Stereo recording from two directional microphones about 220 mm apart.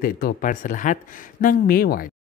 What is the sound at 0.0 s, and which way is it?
Speech, 40° left (ahead or behind).